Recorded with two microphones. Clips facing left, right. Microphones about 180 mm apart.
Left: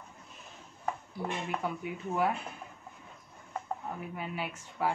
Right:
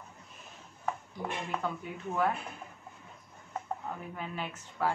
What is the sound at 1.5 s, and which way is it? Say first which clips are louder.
Speech: left 1 dB; 10° left (ahead or behind).